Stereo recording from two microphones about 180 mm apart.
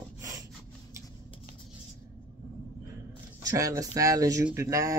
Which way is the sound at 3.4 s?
20° right (ahead or behind).